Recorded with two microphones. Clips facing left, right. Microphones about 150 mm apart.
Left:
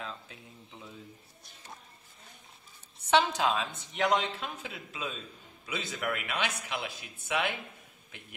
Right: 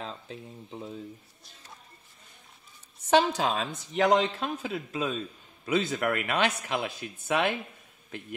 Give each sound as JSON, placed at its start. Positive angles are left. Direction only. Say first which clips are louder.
{"t": 0.0, "sound": "a sound", "louder": "right 4 dB", "side_deg": -30}
{"t": 0.7, "sound": "speech", "louder": "right 10 dB", "side_deg": -40}
{"t": 3.1, "sound": "speech", "louder": "right 3 dB", "side_deg": -40}